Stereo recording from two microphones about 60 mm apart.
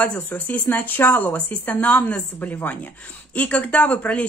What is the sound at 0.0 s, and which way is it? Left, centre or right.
A woman's voice, left.